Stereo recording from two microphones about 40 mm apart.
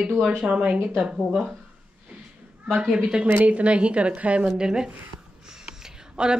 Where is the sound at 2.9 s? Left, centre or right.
Centre.